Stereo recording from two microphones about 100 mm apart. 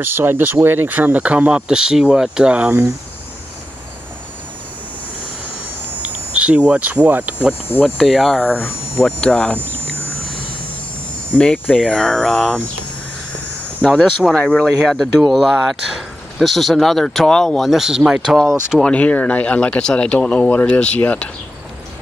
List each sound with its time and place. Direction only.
0.0 s speech: 20° right (ahead or behind)
6.0 s speech: 10° right (ahead or behind)
7.8 s speech: centre (ahead or behind)
8.5 s speech: 20° left (ahead or behind)
9.0 s hum: 5° left (ahead or behind)
11.3 s hum: 15° left (ahead or behind)
11.7 s speech: 5° left (ahead or behind)
13.8 s speech: centre (ahead or behind)